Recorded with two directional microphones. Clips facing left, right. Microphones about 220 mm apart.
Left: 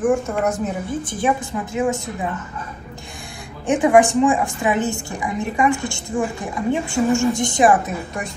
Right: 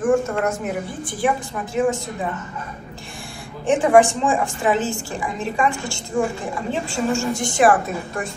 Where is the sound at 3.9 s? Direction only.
15° left (ahead or behind).